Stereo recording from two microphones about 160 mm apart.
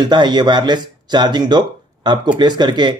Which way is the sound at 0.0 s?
25° right (ahead or behind).